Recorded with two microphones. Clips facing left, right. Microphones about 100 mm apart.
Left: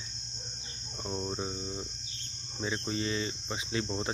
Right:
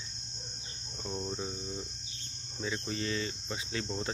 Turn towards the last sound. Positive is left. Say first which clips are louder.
# left 3 dB
turn(degrees=15)  # may be behind; listen again after turning